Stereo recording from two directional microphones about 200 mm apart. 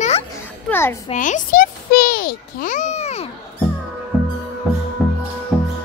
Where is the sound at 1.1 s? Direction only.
40° left (ahead or behind).